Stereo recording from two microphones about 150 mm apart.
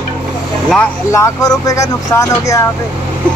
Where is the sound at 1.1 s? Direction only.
20° left (ahead or behind).